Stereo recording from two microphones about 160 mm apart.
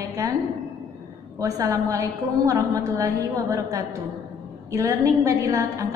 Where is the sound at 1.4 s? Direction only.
20° right (ahead or behind).